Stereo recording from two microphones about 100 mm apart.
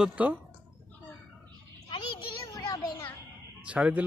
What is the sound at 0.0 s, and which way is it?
Speech, 10° right (ahead or behind).